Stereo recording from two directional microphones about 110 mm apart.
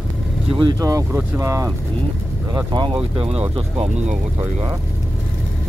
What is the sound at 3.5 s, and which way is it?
Speech, 60° right (ahead or behind).